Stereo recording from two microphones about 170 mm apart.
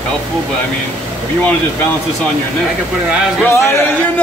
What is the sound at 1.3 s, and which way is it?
Speech, 10° left (ahead or behind).